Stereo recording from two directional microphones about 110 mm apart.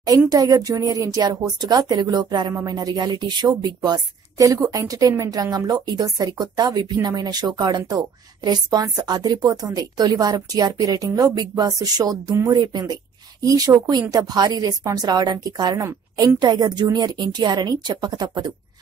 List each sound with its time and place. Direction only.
0.3 s speech: 35° right (ahead or behind)